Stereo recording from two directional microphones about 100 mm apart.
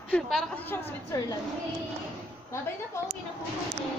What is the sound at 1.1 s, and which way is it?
Speech, 35° left (ahead or behind).